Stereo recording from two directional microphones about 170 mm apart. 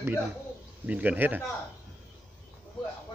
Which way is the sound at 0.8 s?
10° right (ahead or behind).